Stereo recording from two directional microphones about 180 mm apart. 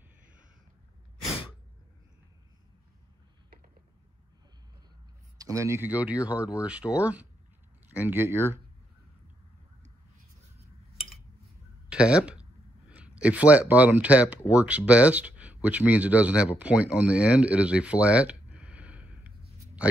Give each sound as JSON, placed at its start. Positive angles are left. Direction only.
{"t": 5.4, "sound": "speech", "side_deg": -15}
{"t": 11.9, "sound": "speech", "side_deg": -5}
{"t": 16.5, "sound": "a sound", "side_deg": -5}